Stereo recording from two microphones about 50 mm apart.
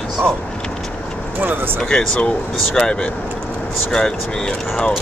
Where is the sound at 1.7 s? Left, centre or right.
Centre.